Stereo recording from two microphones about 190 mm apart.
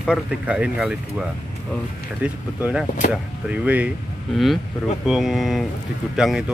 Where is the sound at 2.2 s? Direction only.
5° right (ahead or behind).